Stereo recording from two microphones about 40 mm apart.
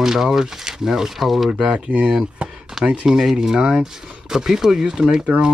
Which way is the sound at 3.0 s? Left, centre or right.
Centre.